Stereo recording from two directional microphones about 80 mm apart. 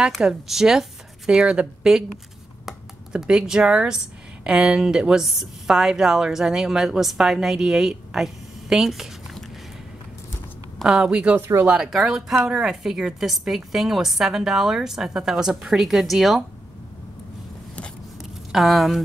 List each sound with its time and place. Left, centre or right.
0.2 s a woman's voice: centre
10.8 s a woman's voice: centre
11.4 s speech: right
11.9 s a woman's voice: centre
18.5 s a woman's voice: centre